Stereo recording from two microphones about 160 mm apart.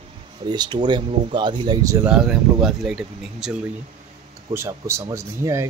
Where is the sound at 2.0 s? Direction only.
5° right (ahead or behind).